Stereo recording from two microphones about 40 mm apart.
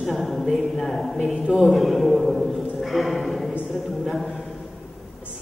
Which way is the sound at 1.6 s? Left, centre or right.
Centre.